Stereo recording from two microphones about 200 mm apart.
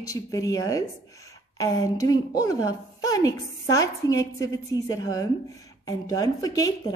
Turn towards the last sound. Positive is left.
turn(degrees=20)  # may be behind; listen again after turning